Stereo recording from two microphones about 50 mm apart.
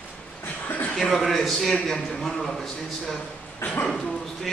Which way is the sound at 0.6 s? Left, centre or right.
Left.